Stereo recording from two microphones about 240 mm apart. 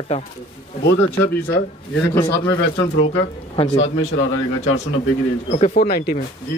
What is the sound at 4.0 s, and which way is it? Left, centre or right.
Speech, left.